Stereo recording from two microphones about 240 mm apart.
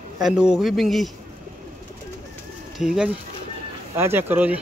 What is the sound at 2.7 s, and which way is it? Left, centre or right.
Speech, centre.